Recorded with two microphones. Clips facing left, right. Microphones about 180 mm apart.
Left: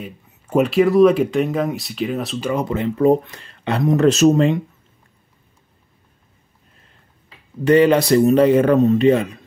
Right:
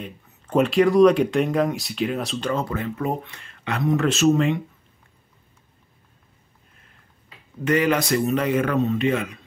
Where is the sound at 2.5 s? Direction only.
20° left (ahead or behind).